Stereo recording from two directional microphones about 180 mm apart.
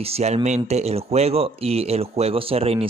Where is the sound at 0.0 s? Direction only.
35° right (ahead or behind).